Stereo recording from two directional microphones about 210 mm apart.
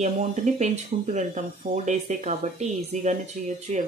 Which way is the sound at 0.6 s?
35° right (ahead or behind).